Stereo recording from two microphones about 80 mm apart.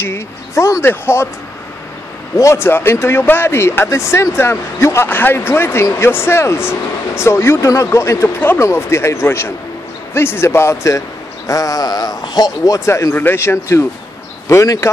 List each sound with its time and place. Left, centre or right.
0.0 s speech: left
2.3 s a man's voice: left
13.1 s speech: left